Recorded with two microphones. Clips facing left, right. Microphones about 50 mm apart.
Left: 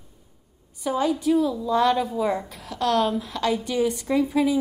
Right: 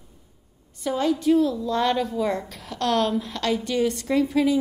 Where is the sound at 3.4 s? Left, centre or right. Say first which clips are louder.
Left 1 dB; centre.